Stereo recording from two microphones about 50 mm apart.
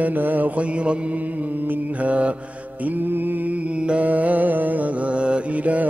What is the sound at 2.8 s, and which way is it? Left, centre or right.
Mantra, right.